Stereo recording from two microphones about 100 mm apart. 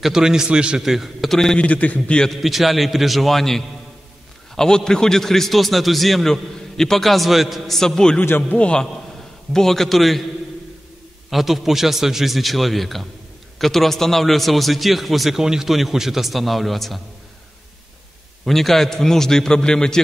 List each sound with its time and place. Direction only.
0.0 s a man's voice: 5° right (ahead or behind)
8.2 s a man's voice: 15° left (ahead or behind); by 10.2 s centre (ahead or behind)
11.2 s a man's voice: centre (ahead or behind)
18.4 s a man's voice: centre (ahead or behind)